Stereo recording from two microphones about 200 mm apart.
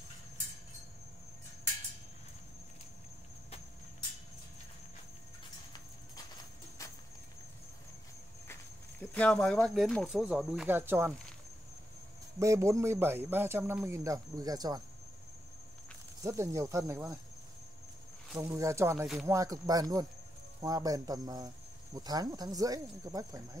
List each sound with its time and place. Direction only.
9.1 s speech: 5° left (ahead or behind); by 11.1 s 10° right (ahead or behind)
12.4 s speech: 15° right (ahead or behind)
16.2 s speech: 15° right (ahead or behind)
18.3 s speech: 15° right (ahead or behind)